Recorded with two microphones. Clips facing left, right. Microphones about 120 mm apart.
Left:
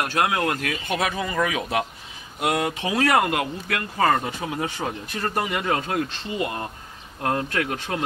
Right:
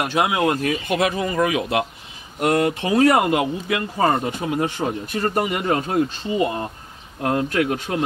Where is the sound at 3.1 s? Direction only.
15° right (ahead or behind).